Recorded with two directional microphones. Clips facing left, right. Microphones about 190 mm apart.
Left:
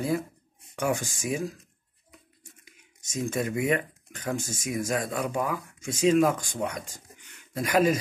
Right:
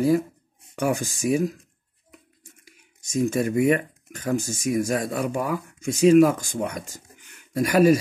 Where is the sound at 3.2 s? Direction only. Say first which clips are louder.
Right 6 dB; 40° right (ahead or behind).